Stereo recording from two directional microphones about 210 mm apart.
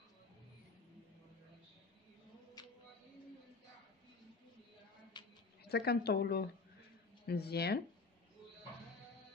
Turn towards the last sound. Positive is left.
turn(degrees=50)  # may be behind; listen again after turning